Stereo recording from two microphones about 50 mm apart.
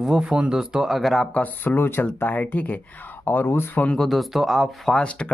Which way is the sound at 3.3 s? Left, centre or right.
Left.